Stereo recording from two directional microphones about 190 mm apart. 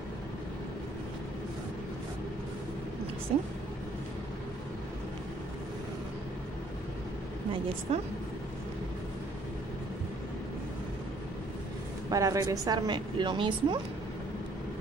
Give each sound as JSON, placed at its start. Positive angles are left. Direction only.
{"t": 3.3, "sound": "speech", "side_deg": -35}
{"t": 7.9, "sound": "speech", "side_deg": -30}
{"t": 12.1, "sound": "a woman's voice", "side_deg": -20}